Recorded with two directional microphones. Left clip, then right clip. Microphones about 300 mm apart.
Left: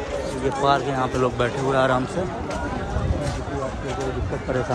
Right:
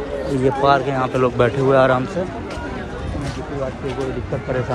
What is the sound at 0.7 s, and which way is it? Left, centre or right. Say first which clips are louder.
Speech: right 3 dB; centre.